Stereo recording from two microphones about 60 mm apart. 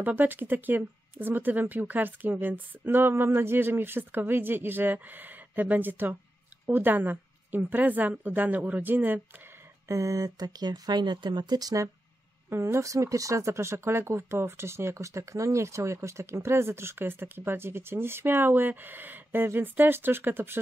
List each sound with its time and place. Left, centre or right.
0.0 s a woman's voice: right
9.8 s speech: right
11.5 s speech: right
12.4 s a woman's voice: right
12.8 s speech: right